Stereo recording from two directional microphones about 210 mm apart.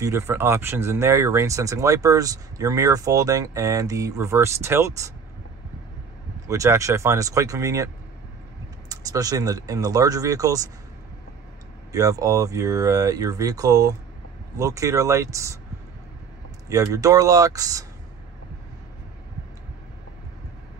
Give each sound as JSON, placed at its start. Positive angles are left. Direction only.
{"t": 0.0, "sound": "speech", "side_deg": -15}
{"t": 6.4, "sound": "speech", "side_deg": -15}
{"t": 11.9, "sound": "speech", "side_deg": -15}
{"t": 16.6, "sound": "speech", "side_deg": -15}